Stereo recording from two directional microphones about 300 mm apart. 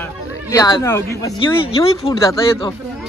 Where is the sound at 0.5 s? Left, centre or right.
Centre.